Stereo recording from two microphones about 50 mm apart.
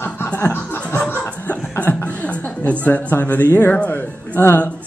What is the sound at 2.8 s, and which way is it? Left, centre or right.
Speech, left.